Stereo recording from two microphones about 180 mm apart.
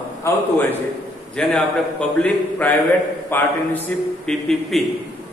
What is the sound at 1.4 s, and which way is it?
A man's voice, 5° left (ahead or behind).